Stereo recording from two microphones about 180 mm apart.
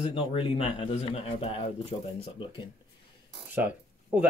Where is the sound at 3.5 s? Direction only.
10° right (ahead or behind).